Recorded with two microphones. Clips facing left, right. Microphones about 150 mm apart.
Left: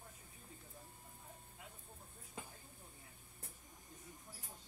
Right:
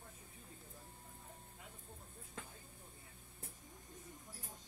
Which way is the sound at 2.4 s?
10° left (ahead or behind).